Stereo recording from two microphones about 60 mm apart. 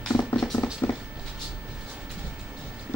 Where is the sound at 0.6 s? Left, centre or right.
Left.